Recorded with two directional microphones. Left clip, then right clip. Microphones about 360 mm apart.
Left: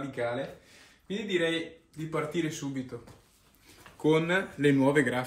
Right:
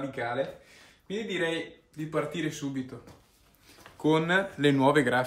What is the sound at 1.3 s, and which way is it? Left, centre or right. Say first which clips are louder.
A man's voice: left 2 dB; centre.